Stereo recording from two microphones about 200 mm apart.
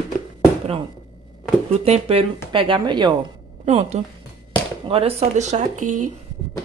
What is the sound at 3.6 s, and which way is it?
Speech, 35° right (ahead or behind).